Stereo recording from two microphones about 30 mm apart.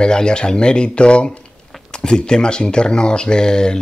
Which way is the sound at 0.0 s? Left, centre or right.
Left.